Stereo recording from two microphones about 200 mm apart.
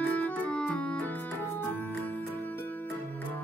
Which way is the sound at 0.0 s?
5° left (ahead or behind).